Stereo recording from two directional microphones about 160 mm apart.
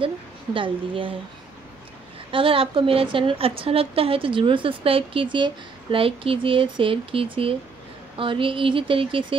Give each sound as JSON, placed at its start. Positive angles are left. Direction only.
{"t": 0.6, "sound": "a woman's voice", "side_deg": -35}
{"t": 2.3, "sound": "a woman's voice", "side_deg": -35}